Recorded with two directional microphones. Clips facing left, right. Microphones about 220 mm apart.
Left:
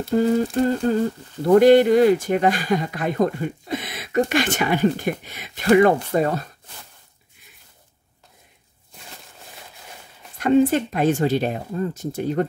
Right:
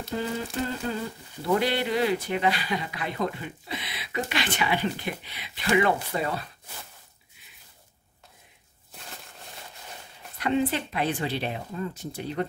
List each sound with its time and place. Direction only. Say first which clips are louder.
0.1 s speech: left 12 dB; 45° left (ahead or behind)
10.4 s speech: left 9 dB; 45° left (ahead or behind)